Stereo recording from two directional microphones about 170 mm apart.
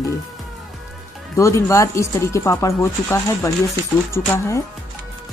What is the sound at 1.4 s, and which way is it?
Speech, 20° left (ahead or behind).